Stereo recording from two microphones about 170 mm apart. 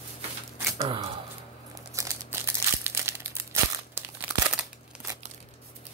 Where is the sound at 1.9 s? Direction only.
20° right (ahead or behind).